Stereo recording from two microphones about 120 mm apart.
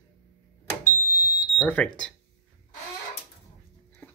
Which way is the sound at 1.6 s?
15° left (ahead or behind).